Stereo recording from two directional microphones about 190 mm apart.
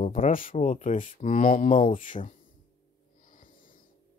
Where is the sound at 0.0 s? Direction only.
45° left (ahead or behind).